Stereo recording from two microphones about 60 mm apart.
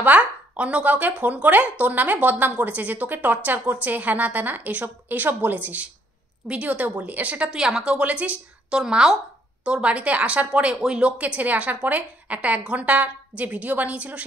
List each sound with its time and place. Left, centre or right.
0.0 s speech: right